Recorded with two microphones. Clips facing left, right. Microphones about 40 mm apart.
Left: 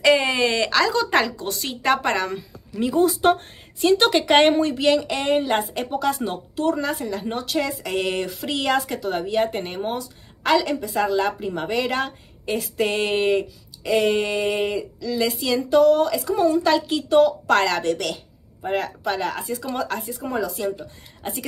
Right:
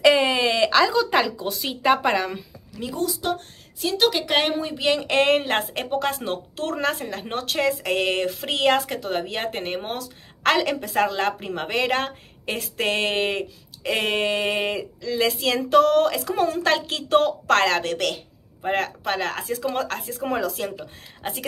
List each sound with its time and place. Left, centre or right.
0.3 s a sound: centre
0.9 s a woman's voice: centre
3.0 s a woman's voice: left
3.8 s a woman's voice: centre
4.6 s speech: centre
4.9 s a woman's voice: right